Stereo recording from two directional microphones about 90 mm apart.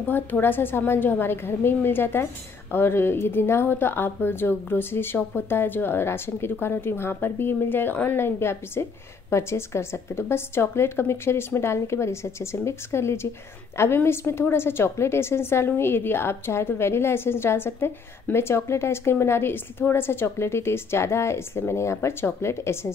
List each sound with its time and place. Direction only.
0.1 s a woman's voice: 20° left (ahead or behind)